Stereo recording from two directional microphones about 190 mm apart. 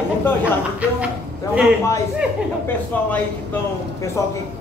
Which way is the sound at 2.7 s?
10° left (ahead or behind).